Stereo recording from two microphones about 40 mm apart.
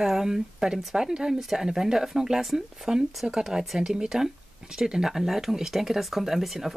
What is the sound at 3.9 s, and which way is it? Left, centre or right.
Speech, centre.